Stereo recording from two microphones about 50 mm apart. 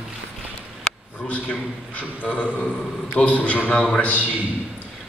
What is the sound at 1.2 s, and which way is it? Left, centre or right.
A man's voice, left.